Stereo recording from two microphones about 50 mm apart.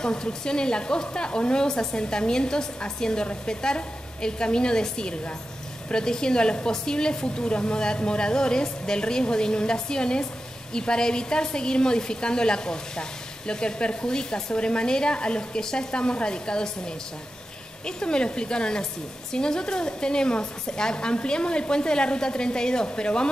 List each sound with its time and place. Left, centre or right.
0.0 s speech: centre